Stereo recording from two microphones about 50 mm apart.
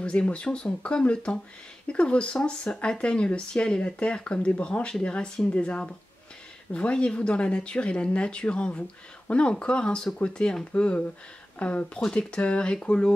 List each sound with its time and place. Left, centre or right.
0.0 s speech: left